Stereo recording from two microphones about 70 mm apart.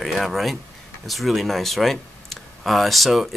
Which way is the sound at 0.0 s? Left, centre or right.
Centre.